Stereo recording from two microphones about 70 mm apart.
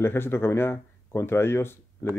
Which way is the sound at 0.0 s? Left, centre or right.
Left.